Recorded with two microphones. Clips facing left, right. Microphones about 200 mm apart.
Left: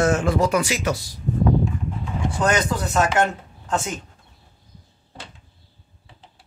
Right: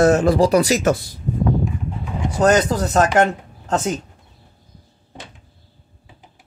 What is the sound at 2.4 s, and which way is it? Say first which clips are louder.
Speech: right 7 dB; 40° right (ahead or behind).